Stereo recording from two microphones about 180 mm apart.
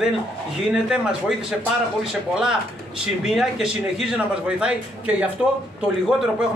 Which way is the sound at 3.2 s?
Centre (ahead or behind).